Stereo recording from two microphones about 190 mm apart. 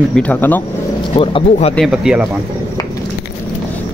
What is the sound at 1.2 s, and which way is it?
Speech, 30° left (ahead or behind).